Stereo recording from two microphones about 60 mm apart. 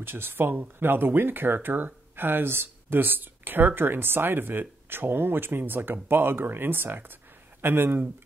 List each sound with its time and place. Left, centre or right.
0.0 s speech: right